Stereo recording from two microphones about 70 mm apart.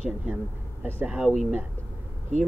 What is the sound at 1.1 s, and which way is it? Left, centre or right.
Speech, centre.